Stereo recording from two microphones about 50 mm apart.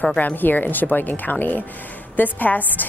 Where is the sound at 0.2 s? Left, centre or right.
Left.